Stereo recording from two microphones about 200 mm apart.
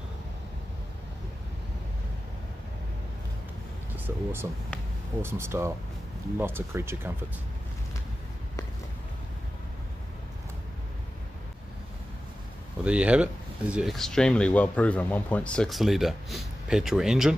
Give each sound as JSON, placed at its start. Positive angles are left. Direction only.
{"t": 3.9, "sound": "speech", "side_deg": -10}
{"t": 12.8, "sound": "speech", "side_deg": -5}